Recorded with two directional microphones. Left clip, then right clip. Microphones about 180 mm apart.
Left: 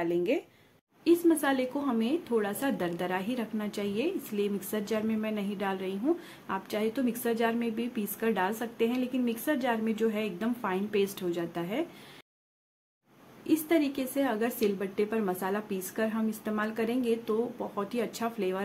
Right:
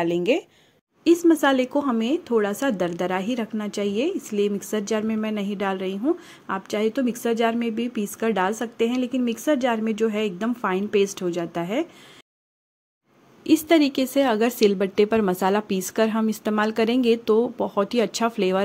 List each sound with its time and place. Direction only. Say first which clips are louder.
0.0 s speech: right 7 dB; 50° right (ahead or behind)
13.4 s speech: right 9 dB; 50° right (ahead or behind)